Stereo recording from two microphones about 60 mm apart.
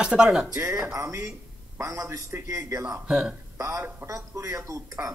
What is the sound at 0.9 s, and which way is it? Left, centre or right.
A man's voice, right.